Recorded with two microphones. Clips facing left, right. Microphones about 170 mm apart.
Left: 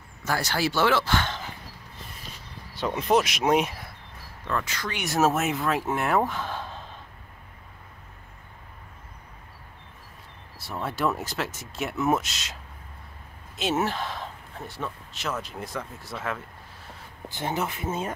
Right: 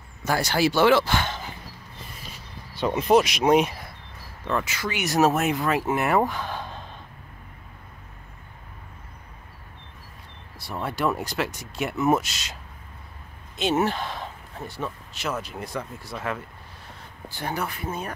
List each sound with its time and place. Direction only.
0.2 s speech: 15° right (ahead or behind)
3.0 s speech: centre (ahead or behind)
10.6 s speech: centre (ahead or behind)
13.6 s speech: centre (ahead or behind)
17.3 s speech: 20° left (ahead or behind)